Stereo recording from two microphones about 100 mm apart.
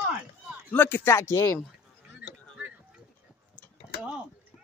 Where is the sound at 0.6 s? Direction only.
20° left (ahead or behind).